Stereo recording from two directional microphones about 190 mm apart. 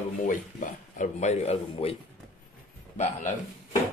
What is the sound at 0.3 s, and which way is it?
Speech, 40° left (ahead or behind).